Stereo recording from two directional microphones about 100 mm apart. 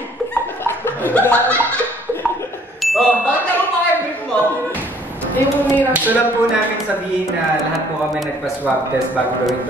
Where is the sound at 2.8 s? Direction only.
Centre (ahead or behind).